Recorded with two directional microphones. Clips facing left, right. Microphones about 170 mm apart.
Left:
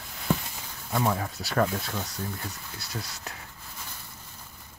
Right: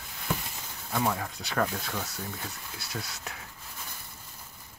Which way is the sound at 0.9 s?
Centre (ahead or behind).